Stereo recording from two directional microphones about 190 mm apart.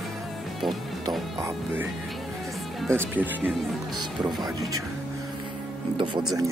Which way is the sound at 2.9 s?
10° right (ahead or behind).